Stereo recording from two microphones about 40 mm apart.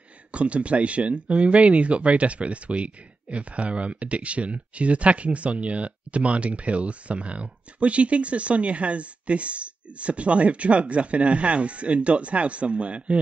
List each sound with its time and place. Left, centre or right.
0.3 s speech: right